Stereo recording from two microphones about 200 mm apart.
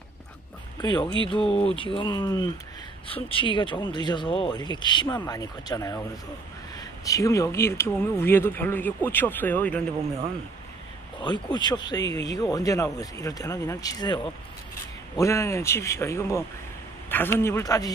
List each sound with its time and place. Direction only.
0.7 s speech: 20° left (ahead or behind)
11.2 s speech: 20° left (ahead or behind)